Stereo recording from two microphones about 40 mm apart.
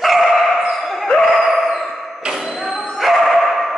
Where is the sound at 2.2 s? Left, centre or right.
Centre.